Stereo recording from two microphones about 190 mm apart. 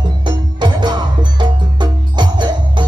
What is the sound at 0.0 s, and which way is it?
Music, 25° right (ahead or behind).